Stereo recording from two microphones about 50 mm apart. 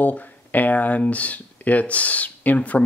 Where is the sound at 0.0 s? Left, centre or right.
Left.